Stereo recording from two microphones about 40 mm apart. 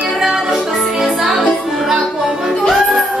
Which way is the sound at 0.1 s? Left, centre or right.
Centre.